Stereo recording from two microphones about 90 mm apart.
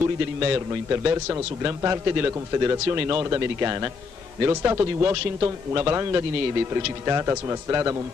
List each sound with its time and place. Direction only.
0.4 s a man's voice: 25° right (ahead or behind)